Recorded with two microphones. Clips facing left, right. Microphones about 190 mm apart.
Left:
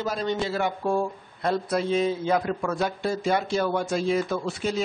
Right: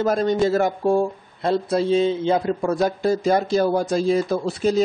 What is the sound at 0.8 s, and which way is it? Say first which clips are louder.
Speech: right 6 dB; 25° right (ahead or behind).